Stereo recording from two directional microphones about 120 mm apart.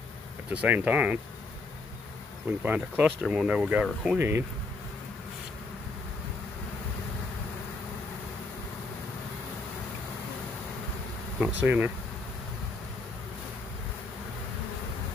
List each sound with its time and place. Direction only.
0.5 s speech: 10° right (ahead or behind)
2.6 s speech: 15° right (ahead or behind)
4.2 s speech: 20° right (ahead or behind)
11.3 s speech: 10° right (ahead or behind)